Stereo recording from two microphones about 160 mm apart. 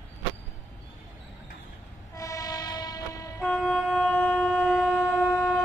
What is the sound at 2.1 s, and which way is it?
Train, 20° left (ahead or behind).